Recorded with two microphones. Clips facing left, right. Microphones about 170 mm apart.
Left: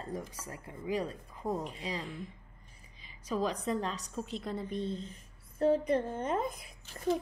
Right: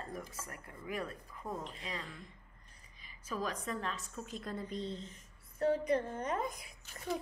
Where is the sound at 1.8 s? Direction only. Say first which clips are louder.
Left 6 dB; 30° left (ahead or behind).